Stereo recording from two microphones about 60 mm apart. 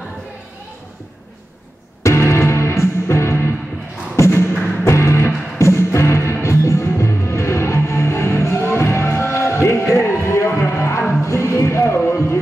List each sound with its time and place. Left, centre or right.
2.0 s music: left